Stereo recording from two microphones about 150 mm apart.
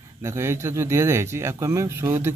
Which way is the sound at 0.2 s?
20° right (ahead or behind).